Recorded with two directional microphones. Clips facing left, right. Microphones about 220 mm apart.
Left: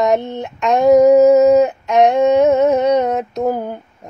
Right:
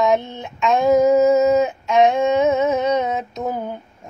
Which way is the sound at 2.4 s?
65° left (ahead or behind).